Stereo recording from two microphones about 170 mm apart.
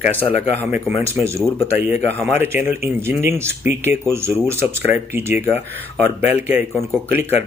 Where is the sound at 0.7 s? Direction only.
10° right (ahead or behind).